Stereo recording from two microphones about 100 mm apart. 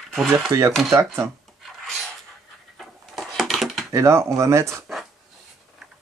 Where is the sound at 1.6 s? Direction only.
Centre (ahead or behind).